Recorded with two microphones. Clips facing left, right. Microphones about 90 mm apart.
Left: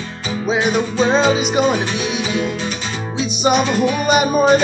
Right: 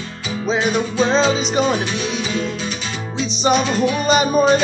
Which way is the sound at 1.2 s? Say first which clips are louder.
Left 2 dB; 55° left (ahead or behind).